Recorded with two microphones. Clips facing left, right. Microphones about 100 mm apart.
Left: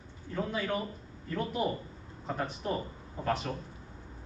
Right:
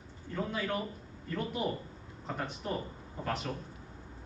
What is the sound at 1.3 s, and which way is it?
Speech, centre (ahead or behind).